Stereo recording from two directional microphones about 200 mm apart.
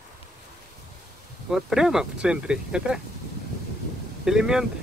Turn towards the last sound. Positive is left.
turn(degrees=-5)  # may be behind; listen again after turning